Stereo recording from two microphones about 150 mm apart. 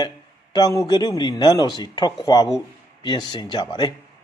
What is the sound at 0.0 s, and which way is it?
A man's voice, 25° left (ahead or behind).